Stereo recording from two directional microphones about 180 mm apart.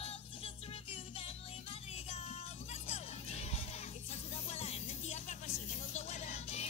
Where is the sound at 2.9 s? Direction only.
35° left (ahead or behind).